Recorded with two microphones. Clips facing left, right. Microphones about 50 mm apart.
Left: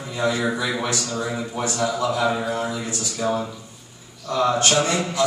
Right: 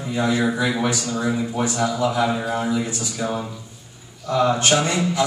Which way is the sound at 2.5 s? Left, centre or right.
Centre.